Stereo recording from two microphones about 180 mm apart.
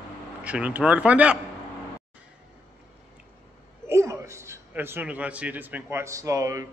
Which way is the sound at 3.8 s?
15° right (ahead or behind).